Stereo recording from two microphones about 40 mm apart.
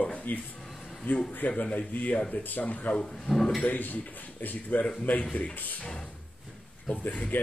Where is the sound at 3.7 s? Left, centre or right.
Left.